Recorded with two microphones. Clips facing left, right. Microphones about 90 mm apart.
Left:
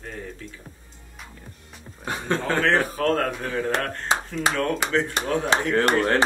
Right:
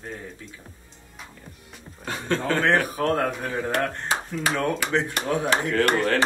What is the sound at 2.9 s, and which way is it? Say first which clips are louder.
Speech: left 1 dB; 15° right (ahead or behind).